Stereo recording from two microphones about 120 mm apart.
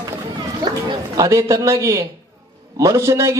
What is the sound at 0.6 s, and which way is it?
Chatter, 35° right (ahead or behind).